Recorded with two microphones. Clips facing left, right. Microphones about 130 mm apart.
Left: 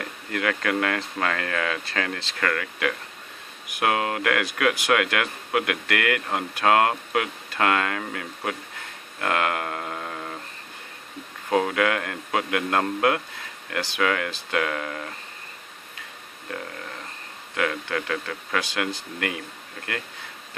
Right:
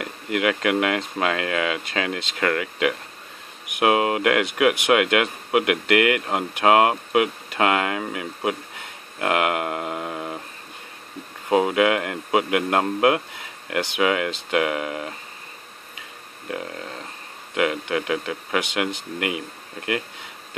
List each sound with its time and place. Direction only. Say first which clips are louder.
0.0 s speech: right 4 dB; 20° right (ahead or behind)
11.4 s speech: right 4 dB; 20° right (ahead or behind)
16.4 s speech: right 4 dB; 25° right (ahead or behind)